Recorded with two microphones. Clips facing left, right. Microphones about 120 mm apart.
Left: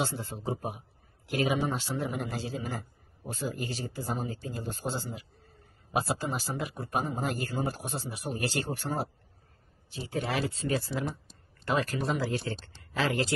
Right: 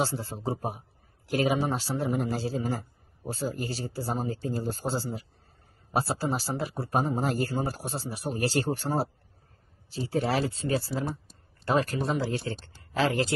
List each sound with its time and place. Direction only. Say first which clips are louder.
0.0 s speech: right 3 dB; 35° right (ahead or behind)